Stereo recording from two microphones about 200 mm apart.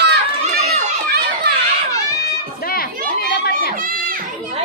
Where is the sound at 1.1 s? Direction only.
50° right (ahead or behind).